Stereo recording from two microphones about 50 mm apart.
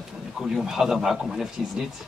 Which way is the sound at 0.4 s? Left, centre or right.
Centre.